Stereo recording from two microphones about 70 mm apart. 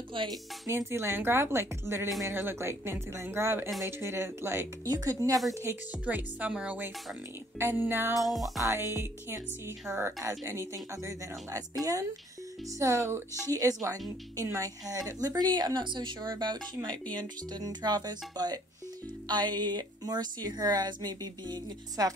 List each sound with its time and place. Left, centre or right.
0.7 s a woman's voice: right
4.8 s speech: right
5.1 s speech: right
5.5 s a woman's voice: right
6.0 s speech: right
7.5 s a woman's voice: right
8.2 s music: centre
8.7 s a woman's voice: right
9.9 s music: centre
10.2 s speech: right
11.8 s speech: right
15.0 s speech: right
19.2 s speech: right